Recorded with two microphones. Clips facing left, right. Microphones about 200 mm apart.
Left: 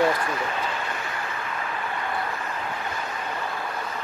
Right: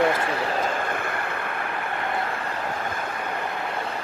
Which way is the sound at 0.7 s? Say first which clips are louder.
Right 4 dB; 50° right (ahead or behind).